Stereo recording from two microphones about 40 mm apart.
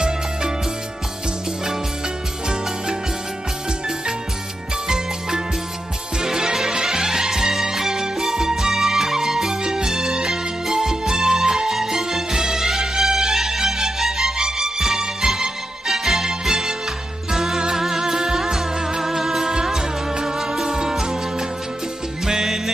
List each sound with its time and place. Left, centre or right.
4.8 s music: centre